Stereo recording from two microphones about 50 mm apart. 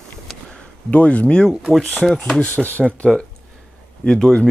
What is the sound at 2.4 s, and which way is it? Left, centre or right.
Speech, left.